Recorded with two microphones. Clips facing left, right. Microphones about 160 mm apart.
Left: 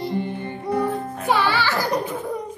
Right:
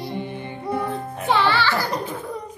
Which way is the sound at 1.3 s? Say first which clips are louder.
Right 1 dB; 10° left (ahead or behind).